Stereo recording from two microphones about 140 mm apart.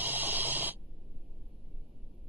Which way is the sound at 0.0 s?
15° right (ahead or behind).